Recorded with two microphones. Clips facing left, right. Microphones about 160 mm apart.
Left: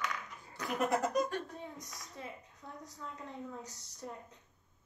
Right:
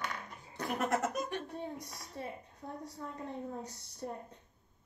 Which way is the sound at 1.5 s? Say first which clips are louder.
Right 5 dB; 30° right (ahead or behind).